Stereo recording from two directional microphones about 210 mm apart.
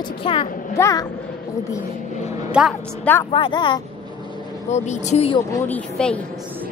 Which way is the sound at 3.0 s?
10° left (ahead or behind).